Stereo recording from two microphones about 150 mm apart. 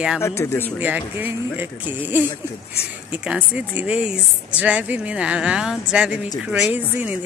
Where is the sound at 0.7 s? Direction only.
10° right (ahead or behind).